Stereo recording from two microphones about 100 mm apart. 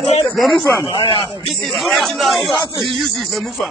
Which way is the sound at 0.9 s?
50° left (ahead or behind).